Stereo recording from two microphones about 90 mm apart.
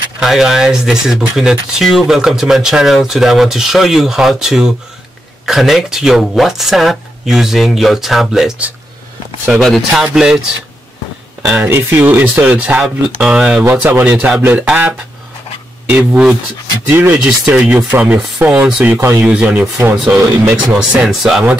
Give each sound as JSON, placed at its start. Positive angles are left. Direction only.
{"t": 0.2, "sound": "speech", "side_deg": -5}
{"t": 9.6, "sound": "speech", "side_deg": 5}
{"t": 11.7, "sound": "speech", "side_deg": -25}
{"t": 18.9, "sound": "speech", "side_deg": -30}
{"t": 19.2, "sound": "speech", "side_deg": -15}
{"t": 20.7, "sound": "speech", "side_deg": -5}